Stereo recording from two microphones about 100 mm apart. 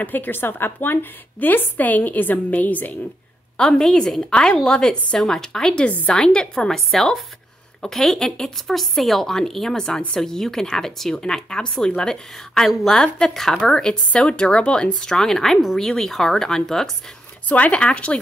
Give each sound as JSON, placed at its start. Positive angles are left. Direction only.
{"t": 0.0, "sound": "a woman's voice", "side_deg": 20}